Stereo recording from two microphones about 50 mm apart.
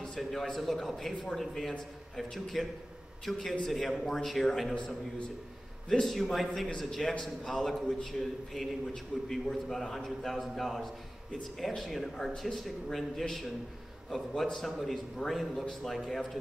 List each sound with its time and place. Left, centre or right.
0.2 s a man's voice: centre
5.9 s a man's voice: centre